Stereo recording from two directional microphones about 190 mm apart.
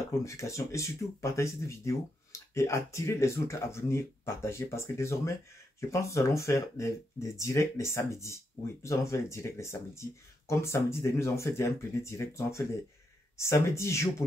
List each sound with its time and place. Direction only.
0.2 s speech: 15° left (ahead or behind)